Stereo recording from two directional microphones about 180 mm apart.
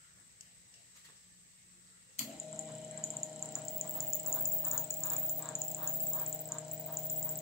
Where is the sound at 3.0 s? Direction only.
Centre (ahead or behind).